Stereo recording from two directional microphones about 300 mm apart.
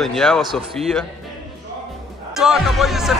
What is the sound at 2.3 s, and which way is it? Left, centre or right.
Speech, centre.